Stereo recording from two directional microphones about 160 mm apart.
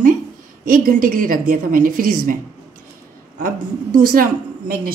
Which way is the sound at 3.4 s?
65° right (ahead or behind).